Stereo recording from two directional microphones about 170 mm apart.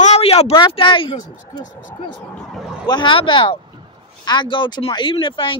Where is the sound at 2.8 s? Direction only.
25° left (ahead or behind).